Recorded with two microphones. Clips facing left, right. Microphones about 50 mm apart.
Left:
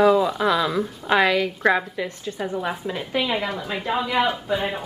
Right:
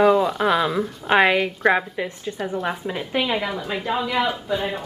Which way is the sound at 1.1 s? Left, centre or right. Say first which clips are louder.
Right 2 dB; right.